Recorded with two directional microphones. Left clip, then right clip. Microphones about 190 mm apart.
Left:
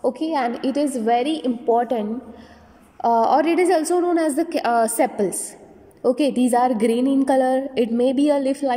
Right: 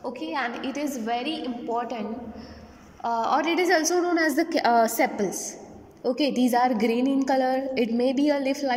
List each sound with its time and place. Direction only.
0.0 s a woman's voice: 35° left (ahead or behind)
1.1 s a woman's voice: 10° left (ahead or behind)
1.7 s a woman's voice: 35° left (ahead or behind); by 8.7 s 20° left (ahead or behind)